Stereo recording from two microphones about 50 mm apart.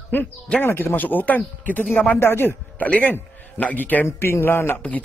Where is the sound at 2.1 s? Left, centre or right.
Left.